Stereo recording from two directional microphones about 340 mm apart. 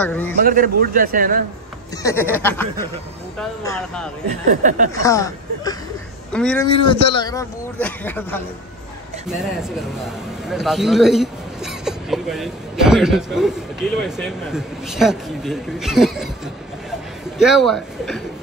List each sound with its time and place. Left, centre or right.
0.0 s a man's voice: centre
0.4 s a man's voice: right
2.0 s a man's voice: centre
4.3 s a man's voice: right
5.0 s a man's voice: centre
6.7 s a man's voice: centre
17.4 s a man's voice: centre